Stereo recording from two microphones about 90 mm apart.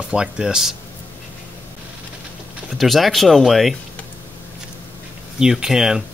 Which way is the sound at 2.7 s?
Centre (ahead or behind).